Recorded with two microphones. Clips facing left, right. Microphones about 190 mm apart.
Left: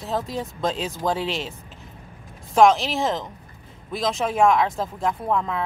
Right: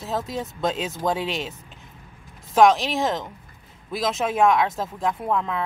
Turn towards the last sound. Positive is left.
turn(degrees=0)  # may be behind; listen again after turning